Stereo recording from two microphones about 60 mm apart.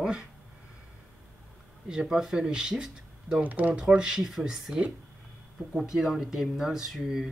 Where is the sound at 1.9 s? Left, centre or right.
Centre.